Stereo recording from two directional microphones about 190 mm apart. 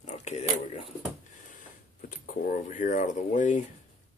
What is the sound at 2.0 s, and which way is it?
Speech, 45° left (ahead or behind).